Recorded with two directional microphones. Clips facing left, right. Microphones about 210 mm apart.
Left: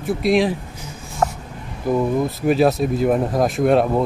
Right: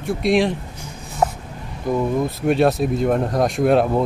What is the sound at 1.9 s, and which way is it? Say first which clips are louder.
Speech: left 1 dB; 5° left (ahead or behind).